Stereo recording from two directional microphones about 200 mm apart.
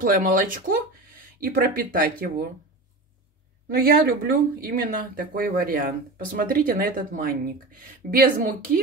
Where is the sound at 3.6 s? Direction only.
50° right (ahead or behind).